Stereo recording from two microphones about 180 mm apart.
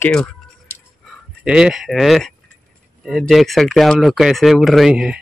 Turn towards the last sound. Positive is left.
turn(degrees=-5)  # may be behind; listen again after turning